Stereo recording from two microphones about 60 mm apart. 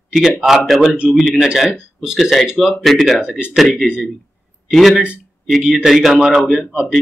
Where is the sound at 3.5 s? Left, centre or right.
Centre.